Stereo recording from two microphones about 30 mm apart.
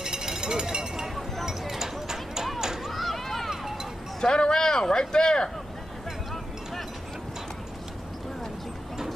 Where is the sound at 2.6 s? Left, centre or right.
Centre.